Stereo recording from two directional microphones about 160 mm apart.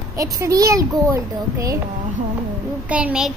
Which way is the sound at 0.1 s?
20° right (ahead or behind).